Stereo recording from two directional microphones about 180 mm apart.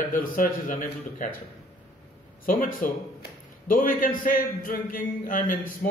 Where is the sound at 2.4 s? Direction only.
50° left (ahead or behind).